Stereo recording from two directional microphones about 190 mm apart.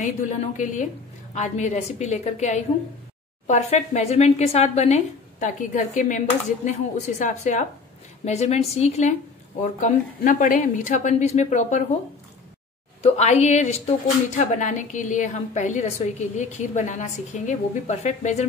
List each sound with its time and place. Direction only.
0.0 s speech: 40° left (ahead or behind)
13.0 s speech: 35° left (ahead or behind)